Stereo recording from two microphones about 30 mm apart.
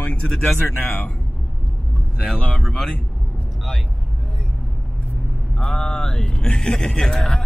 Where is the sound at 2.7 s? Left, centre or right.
Centre.